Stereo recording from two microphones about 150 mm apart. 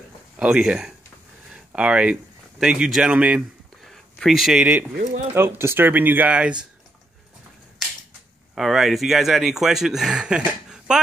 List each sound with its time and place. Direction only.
0.4 s speech: 5° right (ahead or behind)
1.5 s a sound: 5° right (ahead or behind)
2.6 s speech: 5° right (ahead or behind)
5.0 s speech: 55° right (ahead or behind)
5.3 s speech: 15° right (ahead or behind)
8.5 s speech: centre (ahead or behind)